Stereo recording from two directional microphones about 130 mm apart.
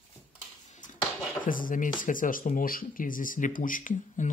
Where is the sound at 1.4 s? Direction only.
90° left.